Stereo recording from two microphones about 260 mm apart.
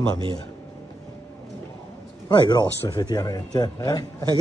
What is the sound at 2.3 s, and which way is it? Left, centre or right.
Speech, centre.